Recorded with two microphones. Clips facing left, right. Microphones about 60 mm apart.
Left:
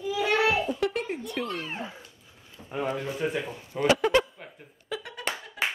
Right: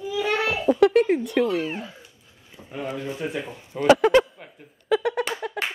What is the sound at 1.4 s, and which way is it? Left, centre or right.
Speech, right.